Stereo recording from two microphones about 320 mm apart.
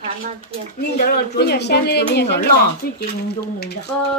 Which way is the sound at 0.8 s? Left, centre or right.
Left.